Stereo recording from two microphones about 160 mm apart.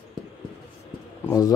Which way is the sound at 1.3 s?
20° left (ahead or behind).